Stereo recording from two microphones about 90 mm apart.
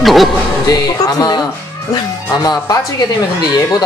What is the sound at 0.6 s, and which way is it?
Music, 45° left (ahead or behind).